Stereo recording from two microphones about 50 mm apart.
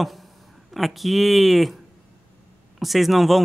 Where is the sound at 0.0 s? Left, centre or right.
Centre.